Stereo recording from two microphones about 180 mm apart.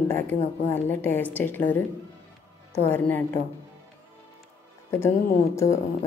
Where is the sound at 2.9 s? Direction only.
10° left (ahead or behind).